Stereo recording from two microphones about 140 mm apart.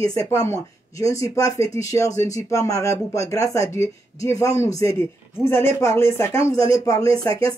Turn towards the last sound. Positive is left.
turn(degrees=25)  # may be behind; listen again after turning